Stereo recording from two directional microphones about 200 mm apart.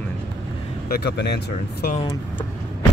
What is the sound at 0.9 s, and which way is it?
Speech, 55° left (ahead or behind).